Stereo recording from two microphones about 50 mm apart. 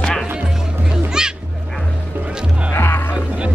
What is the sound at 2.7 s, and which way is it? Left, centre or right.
Music, left.